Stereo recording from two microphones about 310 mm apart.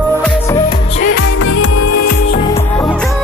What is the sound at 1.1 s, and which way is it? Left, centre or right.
Music, left.